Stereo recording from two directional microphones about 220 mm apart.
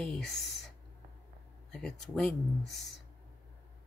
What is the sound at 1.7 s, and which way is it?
Speech, 5° left (ahead or behind).